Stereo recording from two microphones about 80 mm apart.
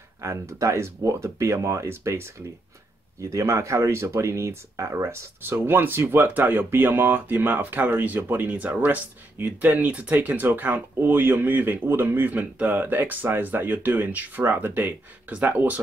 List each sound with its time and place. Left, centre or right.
0.2 s speech: right; by 15.8 s centre